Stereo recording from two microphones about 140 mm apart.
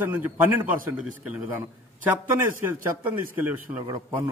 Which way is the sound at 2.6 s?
15° right (ahead or behind).